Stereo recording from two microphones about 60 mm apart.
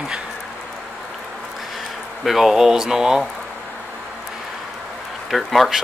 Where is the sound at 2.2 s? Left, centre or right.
Centre.